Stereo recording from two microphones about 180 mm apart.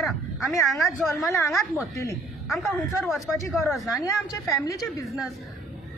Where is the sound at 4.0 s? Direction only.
15° left (ahead or behind).